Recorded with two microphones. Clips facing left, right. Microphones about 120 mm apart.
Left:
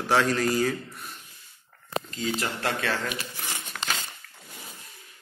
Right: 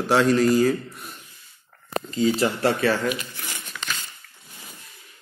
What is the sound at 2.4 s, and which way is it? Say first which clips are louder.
Speech: right 8 dB; 15° right (ahead or behind).